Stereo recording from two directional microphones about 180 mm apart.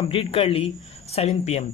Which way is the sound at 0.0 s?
30° left (ahead or behind).